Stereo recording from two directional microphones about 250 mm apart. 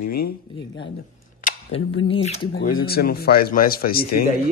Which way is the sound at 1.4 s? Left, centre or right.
Left.